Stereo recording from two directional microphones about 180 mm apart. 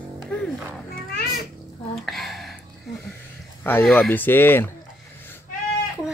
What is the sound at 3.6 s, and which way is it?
Speech, 5° left (ahead or behind).